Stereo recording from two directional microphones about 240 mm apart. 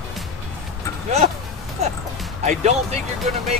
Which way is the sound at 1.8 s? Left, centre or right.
Right.